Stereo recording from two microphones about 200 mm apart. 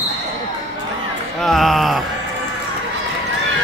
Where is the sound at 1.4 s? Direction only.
Centre (ahead or behind).